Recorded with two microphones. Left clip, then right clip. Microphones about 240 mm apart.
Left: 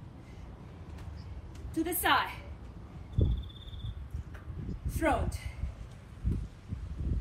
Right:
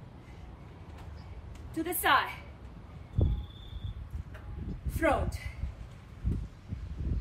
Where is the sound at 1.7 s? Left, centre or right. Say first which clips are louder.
Right 1 dB; centre.